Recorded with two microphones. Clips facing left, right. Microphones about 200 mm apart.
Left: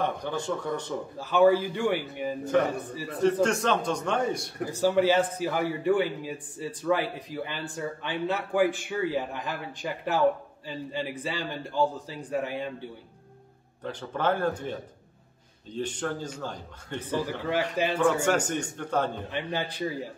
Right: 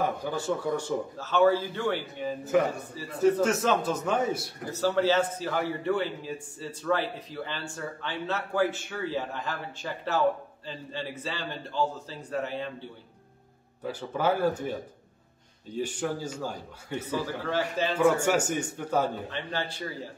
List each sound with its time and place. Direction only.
0.0 s a man's voice: 5° right (ahead or behind)
1.1 s a man's voice: 10° left (ahead or behind)
2.5 s a man's voice: 5° right (ahead or behind)
4.6 s a man's voice: 15° left (ahead or behind)
13.8 s a man's voice: 10° right (ahead or behind)
17.5 s a man's voice: 15° left (ahead or behind)
18.2 s a man's voice: 10° right (ahead or behind)
19.3 s a man's voice: 15° left (ahead or behind)